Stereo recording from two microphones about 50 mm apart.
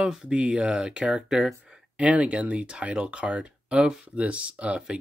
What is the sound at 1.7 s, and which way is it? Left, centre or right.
Speech, right.